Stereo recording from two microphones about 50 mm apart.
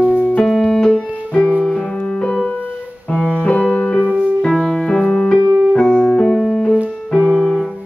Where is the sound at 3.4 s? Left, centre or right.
Left.